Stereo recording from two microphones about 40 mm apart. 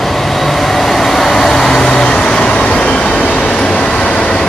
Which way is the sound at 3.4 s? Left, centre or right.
Left.